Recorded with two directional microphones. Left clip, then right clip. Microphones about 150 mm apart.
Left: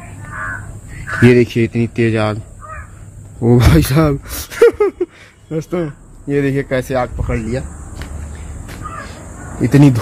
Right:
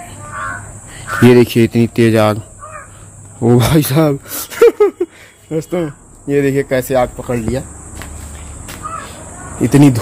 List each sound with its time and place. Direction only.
1.2 s speech: 35° right (ahead or behind)
3.3 s speech: 20° right (ahead or behind)
9.0 s crow: 15° right (ahead or behind)